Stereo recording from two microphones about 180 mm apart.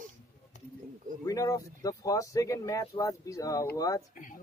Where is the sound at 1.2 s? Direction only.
20° left (ahead or behind).